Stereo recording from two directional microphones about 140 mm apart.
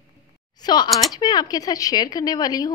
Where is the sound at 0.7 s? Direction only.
30° left (ahead or behind).